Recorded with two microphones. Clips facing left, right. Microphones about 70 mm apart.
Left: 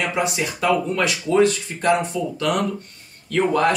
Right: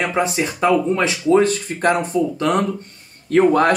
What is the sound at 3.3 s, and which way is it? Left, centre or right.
Speech, right.